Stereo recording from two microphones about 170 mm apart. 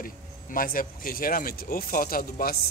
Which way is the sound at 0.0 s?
55° left (ahead or behind).